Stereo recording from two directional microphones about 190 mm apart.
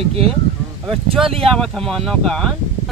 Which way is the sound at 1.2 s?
30° right (ahead or behind).